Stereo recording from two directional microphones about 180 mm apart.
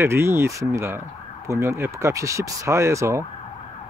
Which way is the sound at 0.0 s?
15° right (ahead or behind).